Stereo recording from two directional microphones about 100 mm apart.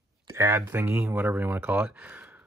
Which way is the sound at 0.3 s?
25° right (ahead or behind).